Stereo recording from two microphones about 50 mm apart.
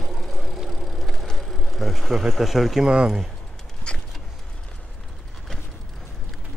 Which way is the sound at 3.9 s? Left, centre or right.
Centre.